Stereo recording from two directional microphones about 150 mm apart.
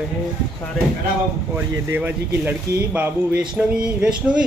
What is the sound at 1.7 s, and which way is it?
Speech, 15° right (ahead or behind).